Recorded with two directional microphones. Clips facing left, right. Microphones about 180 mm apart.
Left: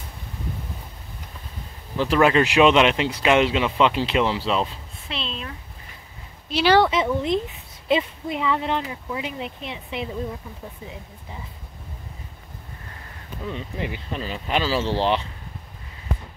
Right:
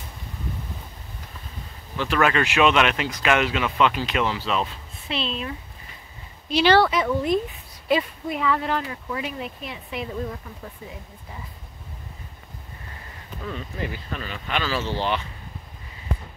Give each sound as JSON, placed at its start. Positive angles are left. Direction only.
{"t": 2.1, "sound": "speech", "side_deg": 25}
{"t": 5.1, "sound": "speech", "side_deg": -5}
{"t": 6.5, "sound": "speech", "side_deg": 5}
{"t": 6.8, "sound": "speech", "side_deg": 25}
{"t": 13.4, "sound": "speech", "side_deg": 20}